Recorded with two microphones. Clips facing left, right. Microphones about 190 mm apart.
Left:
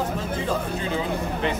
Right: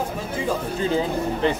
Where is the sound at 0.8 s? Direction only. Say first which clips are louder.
Right 4 dB; 35° right (ahead or behind).